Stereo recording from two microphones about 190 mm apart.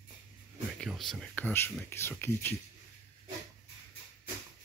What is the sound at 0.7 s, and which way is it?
Speech, centre (ahead or behind).